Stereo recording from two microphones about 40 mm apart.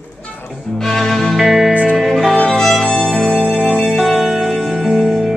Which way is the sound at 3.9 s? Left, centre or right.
Centre.